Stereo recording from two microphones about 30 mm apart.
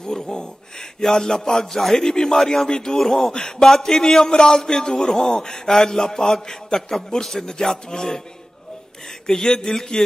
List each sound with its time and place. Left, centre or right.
0.0 s a man's voice: left
2.0 s a man's voice: left
3.0 s a man's voice: centre
3.3 s a man's voice: left
3.6 s a man's voice: centre
9.3 s a man's voice: left